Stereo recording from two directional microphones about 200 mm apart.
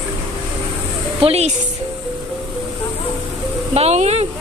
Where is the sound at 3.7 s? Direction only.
30° right (ahead or behind).